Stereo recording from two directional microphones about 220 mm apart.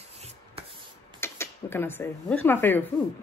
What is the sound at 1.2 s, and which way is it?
Speech, 10° left (ahead or behind).